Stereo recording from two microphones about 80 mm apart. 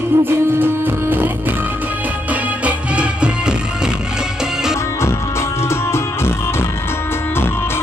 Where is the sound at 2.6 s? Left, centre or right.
Centre.